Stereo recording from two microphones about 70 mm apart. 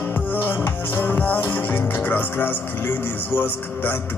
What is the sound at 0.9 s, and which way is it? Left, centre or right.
Music, left.